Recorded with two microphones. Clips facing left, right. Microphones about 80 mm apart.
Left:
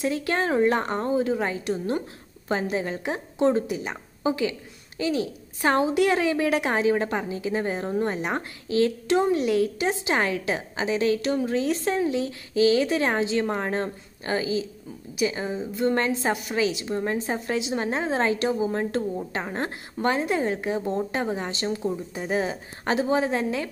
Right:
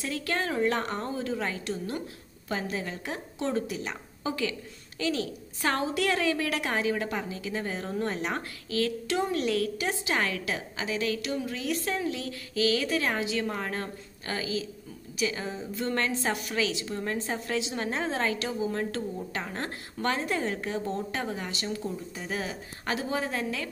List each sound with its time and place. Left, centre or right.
0.0 s a woman's voice: left